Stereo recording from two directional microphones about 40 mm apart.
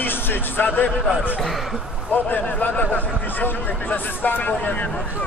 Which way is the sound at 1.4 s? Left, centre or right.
Centre.